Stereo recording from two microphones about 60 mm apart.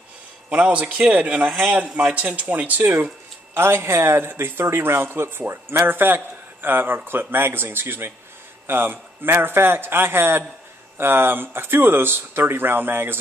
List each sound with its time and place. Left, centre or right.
0.5 s speech: centre; by 13.2 s right